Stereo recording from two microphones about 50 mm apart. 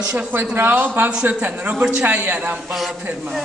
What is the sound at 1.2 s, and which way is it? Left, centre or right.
Speech, right.